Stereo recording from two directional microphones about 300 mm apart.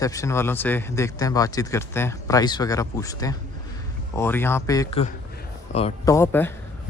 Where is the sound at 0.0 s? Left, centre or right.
Centre.